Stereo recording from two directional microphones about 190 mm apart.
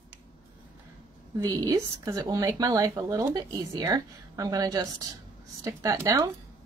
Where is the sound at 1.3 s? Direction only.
20° right (ahead or behind).